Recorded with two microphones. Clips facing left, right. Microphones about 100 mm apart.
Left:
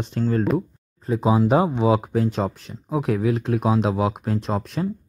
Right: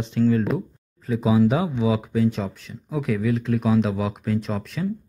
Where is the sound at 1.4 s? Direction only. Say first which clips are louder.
Left 3 dB; 50° left (ahead or behind).